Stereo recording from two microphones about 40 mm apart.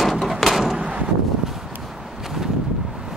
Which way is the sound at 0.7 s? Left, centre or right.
Centre.